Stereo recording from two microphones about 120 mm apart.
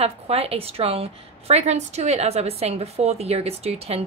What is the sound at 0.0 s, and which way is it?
Speech, 55° right (ahead or behind).